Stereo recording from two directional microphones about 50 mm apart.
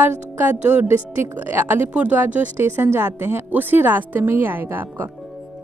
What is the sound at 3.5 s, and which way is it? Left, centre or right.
A woman's voice, right.